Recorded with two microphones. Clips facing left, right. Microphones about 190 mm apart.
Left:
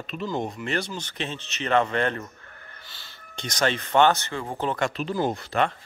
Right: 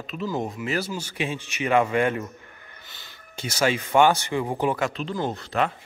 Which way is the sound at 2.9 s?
20° right (ahead or behind).